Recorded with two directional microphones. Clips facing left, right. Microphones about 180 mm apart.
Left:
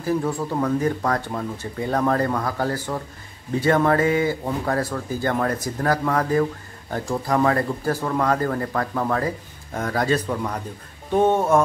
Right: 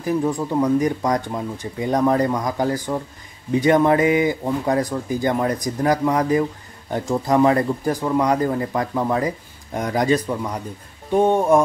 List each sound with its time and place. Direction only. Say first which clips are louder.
0.0 s speech: right 2 dB; 15° right (ahead or behind)